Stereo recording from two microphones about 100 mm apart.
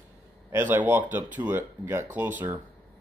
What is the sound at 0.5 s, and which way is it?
Speech, 20° right (ahead or behind).